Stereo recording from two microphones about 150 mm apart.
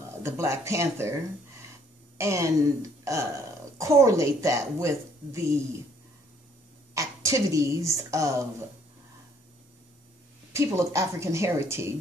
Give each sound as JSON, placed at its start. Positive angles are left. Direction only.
{"t": 0.2, "sound": "a woman's voice", "side_deg": -20}
{"t": 6.9, "sound": "a woman's voice", "side_deg": -20}
{"t": 10.5, "sound": "a woman's voice", "side_deg": -20}